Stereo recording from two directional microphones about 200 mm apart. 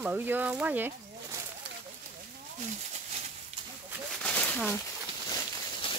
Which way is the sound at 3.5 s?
30° right (ahead or behind).